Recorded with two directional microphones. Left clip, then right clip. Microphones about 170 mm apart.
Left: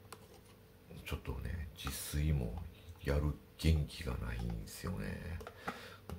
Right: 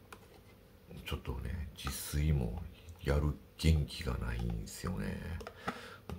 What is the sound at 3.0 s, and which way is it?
Speech, 15° right (ahead or behind).